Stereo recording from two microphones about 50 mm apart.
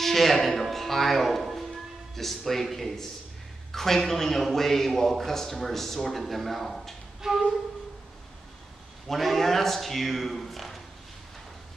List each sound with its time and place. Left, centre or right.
0.0 s a man's voice: centre
7.2 s flute: centre
9.0 s a man's voice: centre